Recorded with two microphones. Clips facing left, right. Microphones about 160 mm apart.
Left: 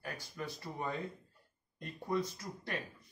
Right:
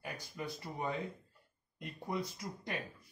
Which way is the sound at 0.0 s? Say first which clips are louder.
Even; 15° right (ahead or behind).